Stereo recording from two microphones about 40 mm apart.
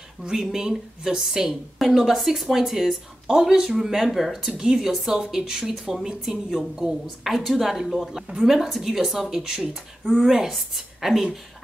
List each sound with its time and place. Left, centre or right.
0.3 s speech: centre
4.4 s speech: centre
5.3 s speech: centre
5.7 s speech: centre
10.8 s a woman's voice: centre